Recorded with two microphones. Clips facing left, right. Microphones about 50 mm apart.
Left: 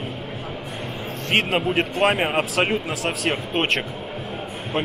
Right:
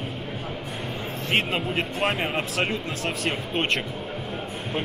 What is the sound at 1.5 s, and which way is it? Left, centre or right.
Speech, centre.